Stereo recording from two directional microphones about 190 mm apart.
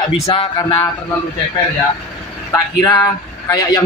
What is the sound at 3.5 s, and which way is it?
Speech, 20° left (ahead or behind).